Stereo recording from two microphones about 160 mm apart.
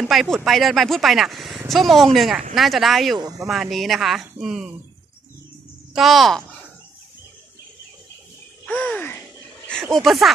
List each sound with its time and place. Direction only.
0.0 s speech: centre (ahead or behind)
3.2 s speech: 25° right (ahead or behind)
3.4 s speech: centre (ahead or behind)
5.9 s speech: centre (ahead or behind)
8.6 s a sound: 10° left (ahead or behind)
9.7 s speech: 5° left (ahead or behind)